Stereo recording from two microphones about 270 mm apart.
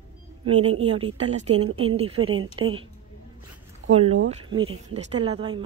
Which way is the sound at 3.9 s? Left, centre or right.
Right.